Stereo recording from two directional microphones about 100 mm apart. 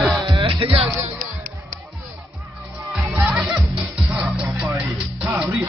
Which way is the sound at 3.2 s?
5° right (ahead or behind).